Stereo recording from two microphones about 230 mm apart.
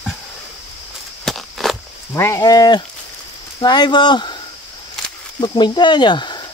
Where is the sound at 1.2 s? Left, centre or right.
Centre.